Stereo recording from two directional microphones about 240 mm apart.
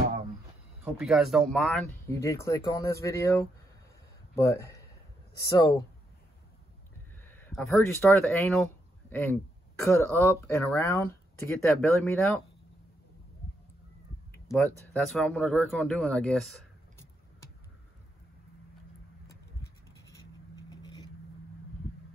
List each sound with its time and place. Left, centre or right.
0.8 s speech: centre
7.2 s speech: centre
14.3 s speech: centre
19.6 s scratch: centre